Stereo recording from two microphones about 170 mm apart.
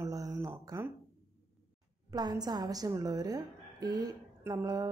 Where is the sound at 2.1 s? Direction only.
25° right (ahead or behind).